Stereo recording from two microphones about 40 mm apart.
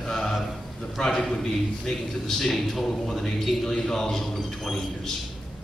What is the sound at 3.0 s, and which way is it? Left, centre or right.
A man's voice, centre.